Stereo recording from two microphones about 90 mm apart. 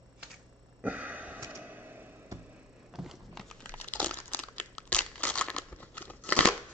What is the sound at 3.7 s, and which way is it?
Crumpling, 15° left (ahead or behind).